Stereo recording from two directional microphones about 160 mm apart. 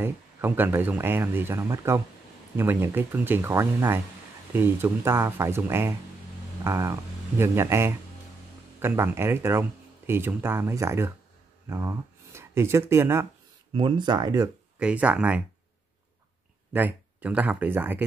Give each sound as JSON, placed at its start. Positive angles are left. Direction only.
{"t": 0.0, "sound": "speech", "side_deg": -10}
{"t": 13.7, "sound": "speech", "side_deg": -30}
{"t": 14.8, "sound": "speech", "side_deg": -5}
{"t": 16.7, "sound": "speech", "side_deg": -10}